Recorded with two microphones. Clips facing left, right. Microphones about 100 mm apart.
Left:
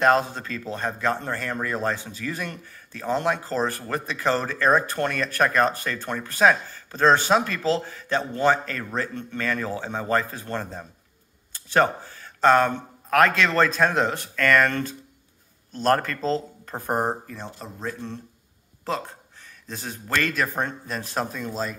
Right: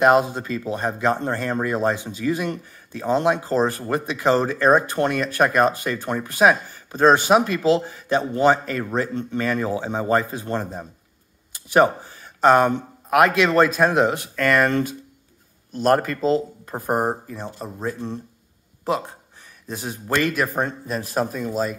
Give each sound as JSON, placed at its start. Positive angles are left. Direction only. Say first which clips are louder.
{"t": 0.0, "sound": "speech", "louder": "right 4 dB", "side_deg": -15}